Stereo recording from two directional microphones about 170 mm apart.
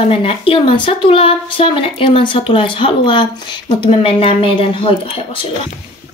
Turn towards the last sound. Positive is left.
turn(degrees=30)  # may be behind; listen again after turning